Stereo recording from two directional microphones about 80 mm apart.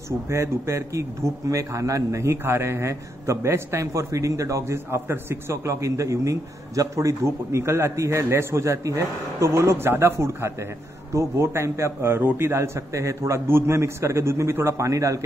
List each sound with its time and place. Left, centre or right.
0.3 s a man's voice: right